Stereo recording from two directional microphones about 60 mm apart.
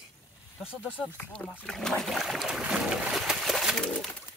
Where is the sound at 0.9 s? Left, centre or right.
Left.